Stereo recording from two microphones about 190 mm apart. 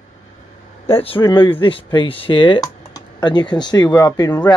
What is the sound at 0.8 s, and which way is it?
Speech, 30° left (ahead or behind).